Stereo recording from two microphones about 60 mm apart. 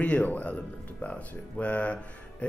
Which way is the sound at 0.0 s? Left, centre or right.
Left.